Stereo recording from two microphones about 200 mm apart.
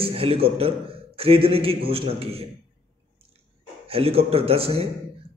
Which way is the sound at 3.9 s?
30° right (ahead or behind).